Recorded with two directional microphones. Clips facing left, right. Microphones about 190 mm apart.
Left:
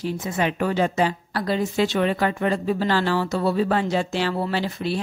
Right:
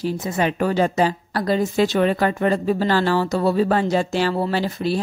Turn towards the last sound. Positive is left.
turn(degrees=-40)  # may be behind; listen again after turning